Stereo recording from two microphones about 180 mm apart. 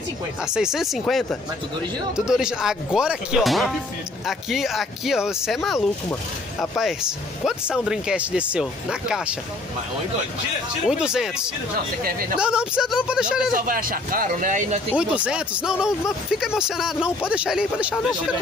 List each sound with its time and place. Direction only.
0.5 s speech: 5° right (ahead or behind)
10.9 s speech: 5° right (ahead or behind)
13.5 s speech: 50° right (ahead or behind)
15.0 s speech: 5° right (ahead or behind)